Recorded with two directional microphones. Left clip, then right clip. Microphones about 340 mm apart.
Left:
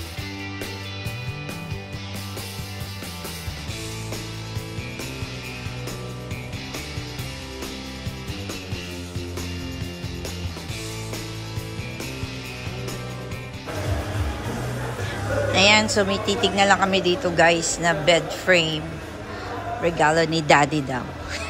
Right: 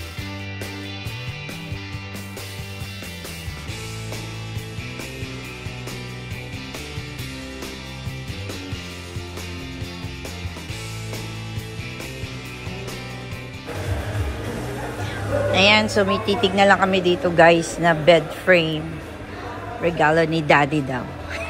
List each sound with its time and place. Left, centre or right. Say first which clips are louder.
15.5 s a woman's voice: right 1 dB; centre
19.8 s a man's voice: right 2 dB; centre